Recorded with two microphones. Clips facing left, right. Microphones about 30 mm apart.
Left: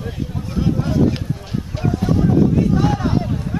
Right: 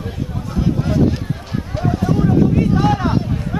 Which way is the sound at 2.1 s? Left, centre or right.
Right.